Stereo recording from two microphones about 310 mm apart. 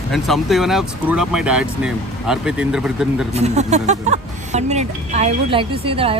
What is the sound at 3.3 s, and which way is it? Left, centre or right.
Speech, right.